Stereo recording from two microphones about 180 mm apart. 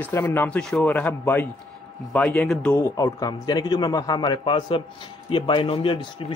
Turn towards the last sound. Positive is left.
turn(degrees=30)  # may be behind; listen again after turning